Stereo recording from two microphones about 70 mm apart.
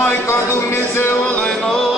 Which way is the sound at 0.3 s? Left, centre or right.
Left.